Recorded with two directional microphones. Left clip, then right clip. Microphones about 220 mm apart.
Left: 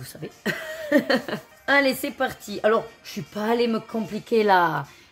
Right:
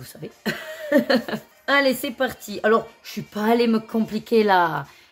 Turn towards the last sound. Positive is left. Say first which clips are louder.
# right 1 dB
turn(degrees=0)  # may be behind; listen again after turning